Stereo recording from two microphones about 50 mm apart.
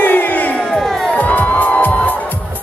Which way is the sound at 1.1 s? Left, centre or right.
Left.